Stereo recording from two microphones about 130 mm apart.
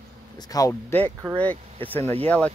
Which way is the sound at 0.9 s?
15° left (ahead or behind).